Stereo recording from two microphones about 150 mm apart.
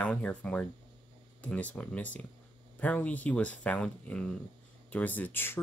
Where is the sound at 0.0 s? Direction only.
10° left (ahead or behind).